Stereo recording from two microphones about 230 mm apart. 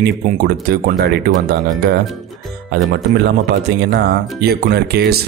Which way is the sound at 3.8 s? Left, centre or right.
Right.